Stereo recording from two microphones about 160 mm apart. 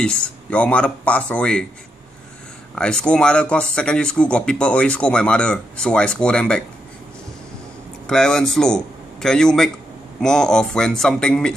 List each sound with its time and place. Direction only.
0.0 s speech: 5° left (ahead or behind)
2.7 s speech: 5° left (ahead or behind)
8.1 s a man's voice: 5° left (ahead or behind)